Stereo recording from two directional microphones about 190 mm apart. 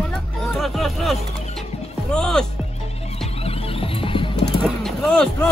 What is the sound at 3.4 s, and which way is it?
Music, 30° left (ahead or behind).